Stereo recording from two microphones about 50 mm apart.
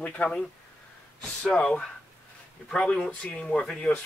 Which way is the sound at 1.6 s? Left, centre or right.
Centre.